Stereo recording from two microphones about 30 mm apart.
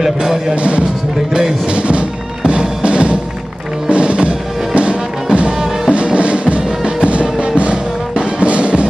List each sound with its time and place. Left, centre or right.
0.0 s music: centre
0.6 s speech: right
1.7 s music: right